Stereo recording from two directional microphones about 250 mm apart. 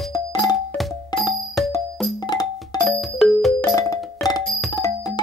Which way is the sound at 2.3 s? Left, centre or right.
Centre.